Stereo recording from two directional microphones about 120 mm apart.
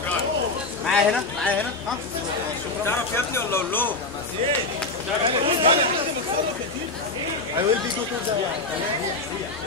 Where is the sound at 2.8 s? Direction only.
20° left (ahead or behind).